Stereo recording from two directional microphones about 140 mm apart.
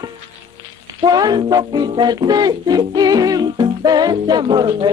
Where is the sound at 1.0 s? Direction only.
30° right (ahead or behind).